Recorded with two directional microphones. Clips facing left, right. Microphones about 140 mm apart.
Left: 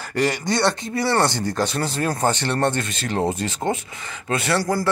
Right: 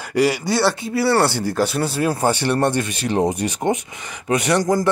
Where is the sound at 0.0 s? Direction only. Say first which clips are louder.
Right 4 dB; 10° right (ahead or behind).